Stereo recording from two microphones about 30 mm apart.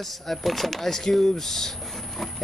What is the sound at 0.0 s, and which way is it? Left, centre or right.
Speech, centre.